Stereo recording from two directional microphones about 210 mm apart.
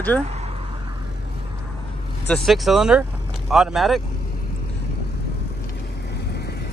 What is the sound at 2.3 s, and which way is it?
Speech, centre (ahead or behind).